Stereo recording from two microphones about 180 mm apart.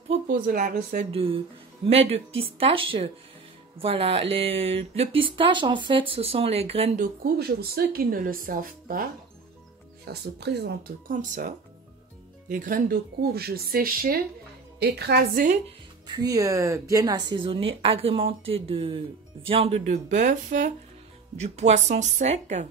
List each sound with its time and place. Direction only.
0.3 s speech: 50° right (ahead or behind)
1.1 s speech: 30° right (ahead or behind)
7.3 s speech: 60° right (ahead or behind)
10.0 s speech: 70° right (ahead or behind)
16.2 s a woman's voice: 20° right (ahead or behind); by 22.7 s 40° right (ahead or behind)